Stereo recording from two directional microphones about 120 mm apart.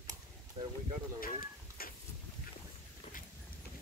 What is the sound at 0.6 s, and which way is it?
Speech, 50° right (ahead or behind).